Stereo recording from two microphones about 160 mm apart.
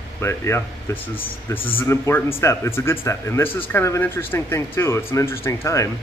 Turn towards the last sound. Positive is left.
turn(degrees=20)  # may be behind; listen again after turning